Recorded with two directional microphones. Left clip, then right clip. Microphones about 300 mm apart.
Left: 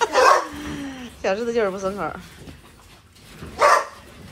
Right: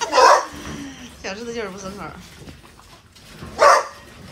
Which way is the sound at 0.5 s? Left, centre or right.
Centre.